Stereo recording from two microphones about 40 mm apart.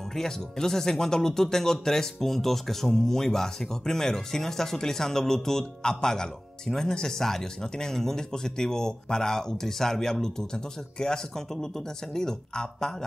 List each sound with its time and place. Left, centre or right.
0.1 s speech: centre